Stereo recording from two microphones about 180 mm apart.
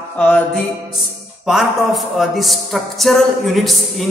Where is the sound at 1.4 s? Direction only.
Centre (ahead or behind).